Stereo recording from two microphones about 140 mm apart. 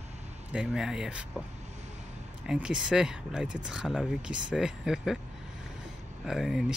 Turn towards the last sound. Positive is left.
turn(degrees=0)  # may be behind; listen again after turning